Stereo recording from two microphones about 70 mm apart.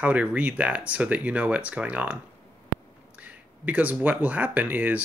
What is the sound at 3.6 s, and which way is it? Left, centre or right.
Speech, right.